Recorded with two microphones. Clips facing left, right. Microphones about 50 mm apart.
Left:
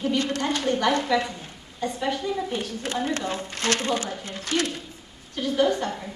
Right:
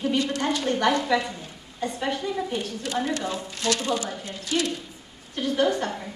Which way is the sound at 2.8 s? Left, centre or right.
Left.